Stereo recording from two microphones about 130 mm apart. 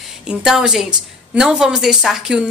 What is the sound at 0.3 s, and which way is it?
Speech, 5° right (ahead or behind).